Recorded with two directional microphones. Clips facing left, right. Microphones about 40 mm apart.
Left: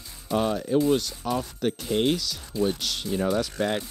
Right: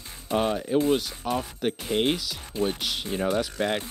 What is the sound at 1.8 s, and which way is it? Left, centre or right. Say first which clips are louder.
Speech: left 1 dB; right.